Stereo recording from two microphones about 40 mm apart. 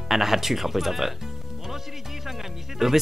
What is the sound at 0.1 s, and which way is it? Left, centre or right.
Speech, centre.